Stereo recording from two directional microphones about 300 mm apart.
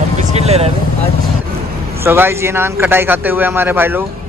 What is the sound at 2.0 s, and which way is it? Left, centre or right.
Speech, centre.